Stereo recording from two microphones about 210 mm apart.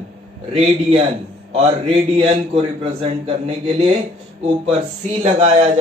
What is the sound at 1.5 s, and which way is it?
A man's voice, 25° right (ahead or behind).